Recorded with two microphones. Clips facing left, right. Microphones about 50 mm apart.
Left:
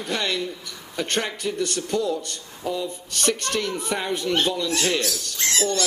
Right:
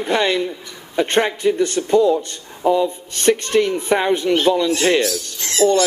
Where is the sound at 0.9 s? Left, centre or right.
Right.